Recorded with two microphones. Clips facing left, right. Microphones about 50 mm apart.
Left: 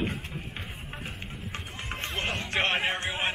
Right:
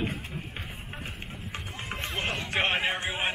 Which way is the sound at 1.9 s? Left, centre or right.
Centre.